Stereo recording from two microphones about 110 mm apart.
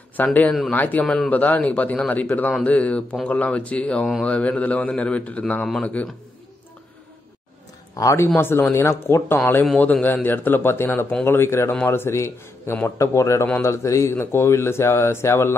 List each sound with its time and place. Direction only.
0.2 s a man's voice: 15° left (ahead or behind)
7.9 s a man's voice: 30° left (ahead or behind)